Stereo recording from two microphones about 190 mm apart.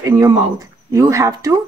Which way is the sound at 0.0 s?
15° right (ahead or behind).